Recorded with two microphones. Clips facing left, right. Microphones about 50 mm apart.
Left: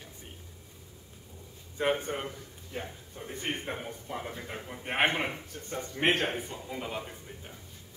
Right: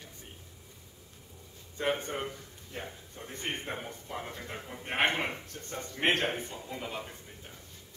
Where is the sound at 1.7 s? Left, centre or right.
Centre.